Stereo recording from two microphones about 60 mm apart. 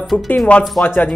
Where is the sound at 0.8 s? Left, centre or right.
Left.